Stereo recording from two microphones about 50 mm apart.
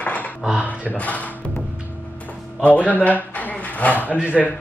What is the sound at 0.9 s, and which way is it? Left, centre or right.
Speech, left.